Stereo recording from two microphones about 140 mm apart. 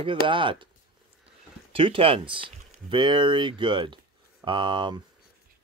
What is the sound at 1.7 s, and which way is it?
Speech, 40° right (ahead or behind).